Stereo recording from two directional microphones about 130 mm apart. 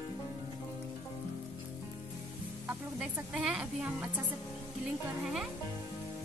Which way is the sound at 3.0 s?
5° right (ahead or behind).